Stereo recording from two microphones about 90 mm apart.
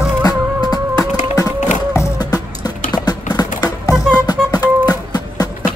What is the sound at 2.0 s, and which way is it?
Music, 40° left (ahead or behind).